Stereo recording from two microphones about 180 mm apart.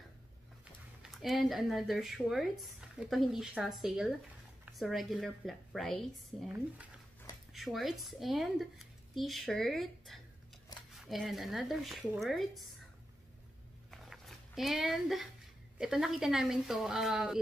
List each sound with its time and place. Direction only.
1.1 s speech: centre (ahead or behind)
7.5 s speech: centre (ahead or behind)
10.7 s a sound: 20° left (ahead or behind)
11.1 s speech: centre (ahead or behind)
13.8 s a sound: centre (ahead or behind)
15.8 s speech: centre (ahead or behind)